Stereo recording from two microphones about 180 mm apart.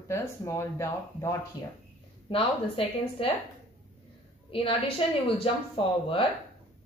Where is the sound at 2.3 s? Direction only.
30° left (ahead or behind).